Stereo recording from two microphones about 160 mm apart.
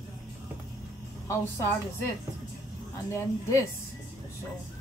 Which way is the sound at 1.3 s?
15° left (ahead or behind).